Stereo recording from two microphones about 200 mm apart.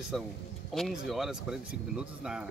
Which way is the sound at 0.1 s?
Centre (ahead or behind).